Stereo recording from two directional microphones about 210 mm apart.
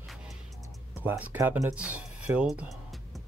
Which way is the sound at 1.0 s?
10° right (ahead or behind).